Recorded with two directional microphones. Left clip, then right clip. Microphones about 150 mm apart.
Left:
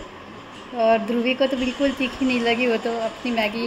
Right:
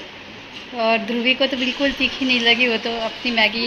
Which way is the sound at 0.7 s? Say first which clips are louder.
Even; 15° left (ahead or behind).